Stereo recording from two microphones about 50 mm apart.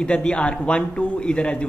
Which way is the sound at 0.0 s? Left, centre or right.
Centre.